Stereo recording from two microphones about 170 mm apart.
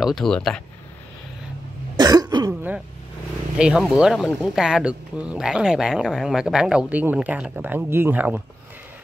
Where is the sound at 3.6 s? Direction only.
5° right (ahead or behind).